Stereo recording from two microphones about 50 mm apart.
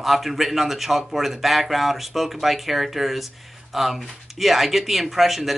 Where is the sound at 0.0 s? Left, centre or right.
Centre.